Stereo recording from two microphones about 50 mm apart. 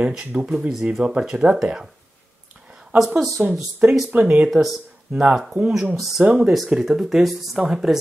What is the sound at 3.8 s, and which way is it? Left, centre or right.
Speech, right.